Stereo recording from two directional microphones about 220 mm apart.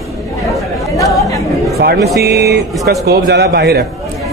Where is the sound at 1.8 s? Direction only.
45° right (ahead or behind).